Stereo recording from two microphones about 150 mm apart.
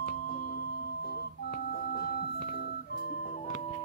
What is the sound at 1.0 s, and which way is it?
Organ, 85° left.